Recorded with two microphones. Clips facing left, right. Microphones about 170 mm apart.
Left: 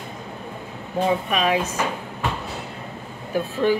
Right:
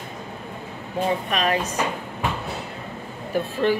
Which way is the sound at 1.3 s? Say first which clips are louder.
Left 2 dB; 10° left (ahead or behind).